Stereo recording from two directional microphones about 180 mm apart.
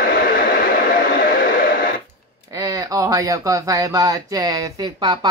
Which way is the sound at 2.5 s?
20° right (ahead or behind).